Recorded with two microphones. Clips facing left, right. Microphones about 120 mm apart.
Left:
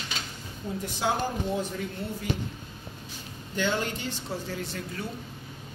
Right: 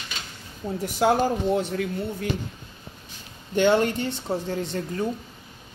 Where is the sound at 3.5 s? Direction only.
60° right (ahead or behind).